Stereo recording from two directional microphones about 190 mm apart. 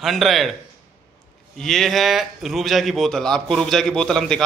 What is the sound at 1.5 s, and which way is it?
A man's voice, centre (ahead or behind).